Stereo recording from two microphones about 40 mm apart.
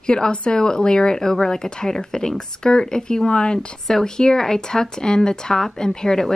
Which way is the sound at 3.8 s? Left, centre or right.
Centre.